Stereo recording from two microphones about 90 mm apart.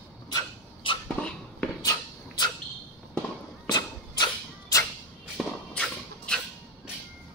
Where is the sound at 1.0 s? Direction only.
15° left (ahead or behind).